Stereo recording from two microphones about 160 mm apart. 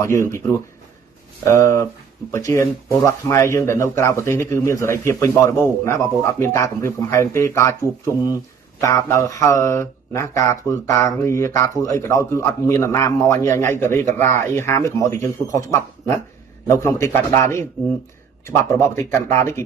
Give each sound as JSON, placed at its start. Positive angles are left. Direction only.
{"t": 0.0, "sound": "speech", "side_deg": 15}
{"t": 8.8, "sound": "speech", "side_deg": 20}
{"t": 16.6, "sound": "speech", "side_deg": 15}